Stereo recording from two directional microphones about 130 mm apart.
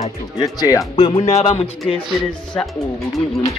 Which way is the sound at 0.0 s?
30° left (ahead or behind).